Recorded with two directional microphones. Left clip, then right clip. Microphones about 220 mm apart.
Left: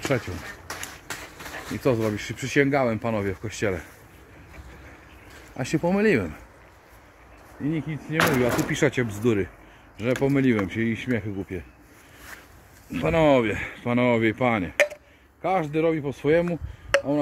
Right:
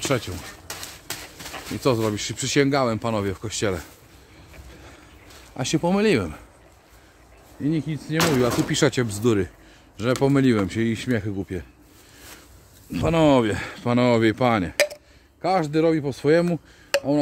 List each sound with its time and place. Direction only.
0.7 s a sound: 10° right (ahead or behind)
1.8 s speech: 25° right (ahead or behind)
5.6 s speech: 15° right (ahead or behind)
7.7 s speech: 35° right (ahead or behind)
12.9 s speech: 40° right (ahead or behind)